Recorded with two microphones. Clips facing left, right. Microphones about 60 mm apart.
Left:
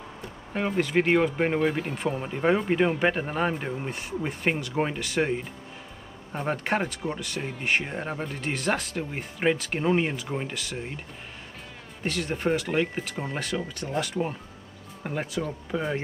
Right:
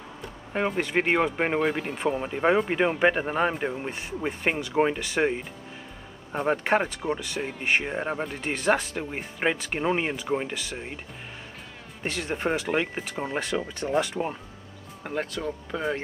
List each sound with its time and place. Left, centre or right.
0.8 s speech: centre
1.6 s speech: centre
12.0 s speech: centre
15.0 s speech: centre